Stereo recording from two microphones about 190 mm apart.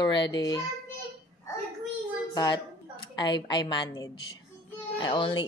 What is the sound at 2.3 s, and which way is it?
A woman's voice, 20° left (ahead or behind).